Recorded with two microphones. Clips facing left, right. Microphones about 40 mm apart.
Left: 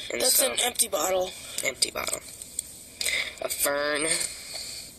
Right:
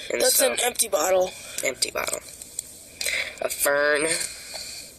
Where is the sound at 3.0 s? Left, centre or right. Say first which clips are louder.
Right 2 dB; right.